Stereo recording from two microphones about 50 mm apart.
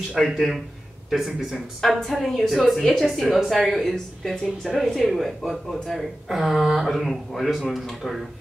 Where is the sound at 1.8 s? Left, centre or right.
Centre.